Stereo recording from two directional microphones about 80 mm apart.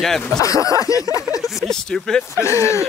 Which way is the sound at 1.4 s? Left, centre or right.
Centre.